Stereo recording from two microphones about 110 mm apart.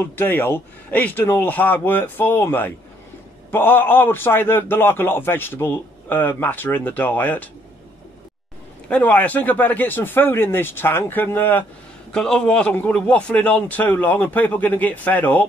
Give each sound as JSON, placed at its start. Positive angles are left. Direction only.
{"t": 0.0, "sound": "a man's voice", "side_deg": 20}
{"t": 8.8, "sound": "a man's voice", "side_deg": 10}
{"t": 12.1, "sound": "a man's voice", "side_deg": 5}